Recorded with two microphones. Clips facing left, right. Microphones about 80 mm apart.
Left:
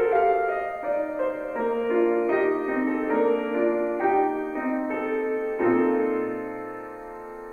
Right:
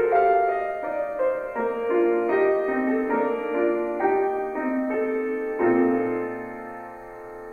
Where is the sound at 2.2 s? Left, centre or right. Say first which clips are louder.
Right 2 dB; centre.